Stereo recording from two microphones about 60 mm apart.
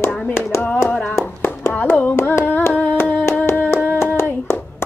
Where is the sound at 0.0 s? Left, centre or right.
Left.